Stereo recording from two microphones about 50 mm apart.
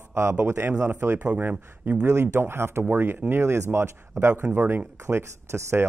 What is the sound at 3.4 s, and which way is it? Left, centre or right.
Speech, right.